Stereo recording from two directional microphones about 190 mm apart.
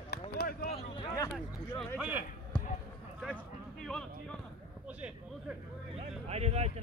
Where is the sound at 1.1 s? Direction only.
20° left (ahead or behind).